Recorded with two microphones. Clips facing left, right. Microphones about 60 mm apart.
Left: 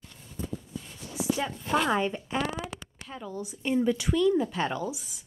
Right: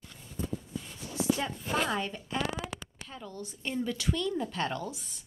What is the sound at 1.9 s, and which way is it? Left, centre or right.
Speech, left.